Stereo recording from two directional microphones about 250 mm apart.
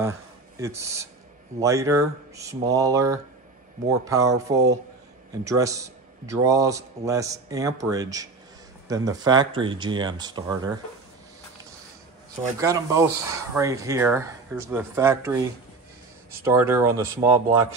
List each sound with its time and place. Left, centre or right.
0.6 s a man's voice: centre
12.5 s a man's voice: centre
16.4 s a man's voice: centre